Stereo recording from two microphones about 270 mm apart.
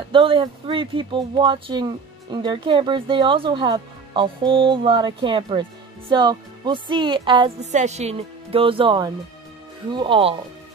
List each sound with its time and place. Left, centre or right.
0.1 s speech: centre